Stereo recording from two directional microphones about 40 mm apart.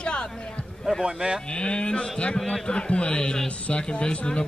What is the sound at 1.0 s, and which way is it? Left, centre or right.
Speech, centre.